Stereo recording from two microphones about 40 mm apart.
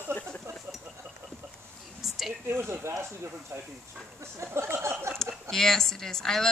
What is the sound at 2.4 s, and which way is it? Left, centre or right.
Speech, right.